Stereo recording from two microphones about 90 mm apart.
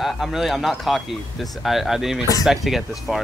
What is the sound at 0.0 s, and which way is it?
Speech, centre (ahead or behind).